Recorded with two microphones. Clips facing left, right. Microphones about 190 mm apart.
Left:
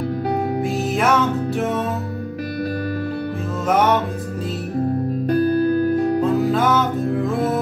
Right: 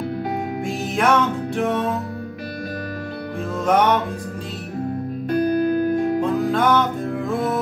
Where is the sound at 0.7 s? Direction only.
5° left (ahead or behind).